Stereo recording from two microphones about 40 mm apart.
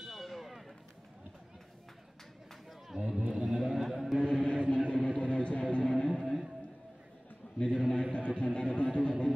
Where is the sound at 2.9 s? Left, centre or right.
Centre.